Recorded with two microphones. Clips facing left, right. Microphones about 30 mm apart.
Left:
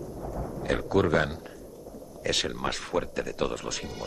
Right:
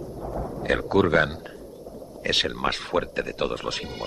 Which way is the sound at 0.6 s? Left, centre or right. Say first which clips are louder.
Right 4 dB; right.